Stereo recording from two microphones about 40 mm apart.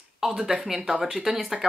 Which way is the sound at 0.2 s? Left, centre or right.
Centre.